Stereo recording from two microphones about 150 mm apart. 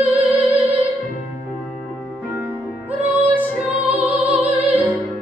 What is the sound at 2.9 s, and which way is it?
Music, 10° right (ahead or behind).